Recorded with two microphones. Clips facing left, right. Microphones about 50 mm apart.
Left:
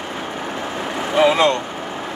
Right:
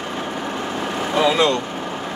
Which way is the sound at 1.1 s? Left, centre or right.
Left.